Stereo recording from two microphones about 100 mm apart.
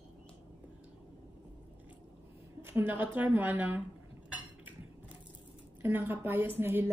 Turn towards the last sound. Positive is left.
turn(degrees=-20)  # may be behind; listen again after turning